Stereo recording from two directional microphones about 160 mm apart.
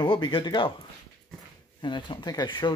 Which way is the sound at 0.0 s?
30° left (ahead or behind).